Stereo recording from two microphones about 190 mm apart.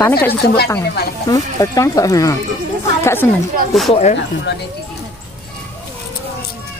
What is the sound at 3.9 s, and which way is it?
Speech, 35° left (ahead or behind).